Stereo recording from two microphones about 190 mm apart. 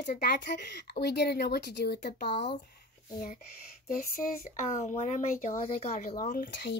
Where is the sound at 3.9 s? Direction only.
50° left (ahead or behind).